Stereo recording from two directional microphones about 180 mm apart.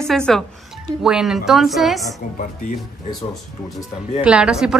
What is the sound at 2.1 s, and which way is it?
Speech, 45° left (ahead or behind).